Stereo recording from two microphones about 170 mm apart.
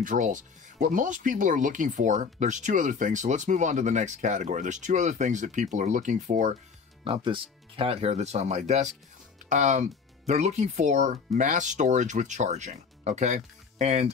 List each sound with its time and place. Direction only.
0.0 s speech: 50° right (ahead or behind)
7.1 s speech: 30° right (ahead or behind)